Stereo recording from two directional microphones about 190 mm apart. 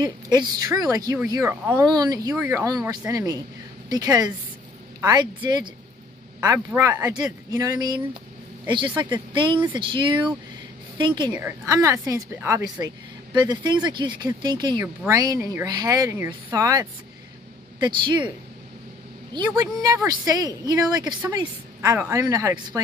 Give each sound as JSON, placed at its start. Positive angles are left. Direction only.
{"t": 0.0, "sound": "a woman's voice", "side_deg": -20}
{"t": 2.3, "sound": "a woman's voice", "side_deg": -10}
{"t": 3.1, "sound": "a woman's voice", "side_deg": -20}
{"t": 19.3, "sound": "a woman's voice", "side_deg": -20}